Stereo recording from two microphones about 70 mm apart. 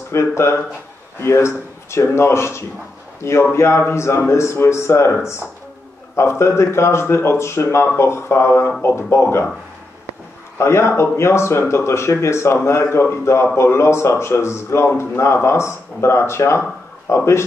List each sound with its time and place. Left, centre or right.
0.1 s a man's voice: left
10.6 s a man's voice: left